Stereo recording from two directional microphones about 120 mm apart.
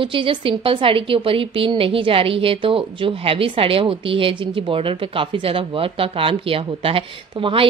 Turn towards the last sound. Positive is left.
turn(degrees=-50)  # may be behind; listen again after turning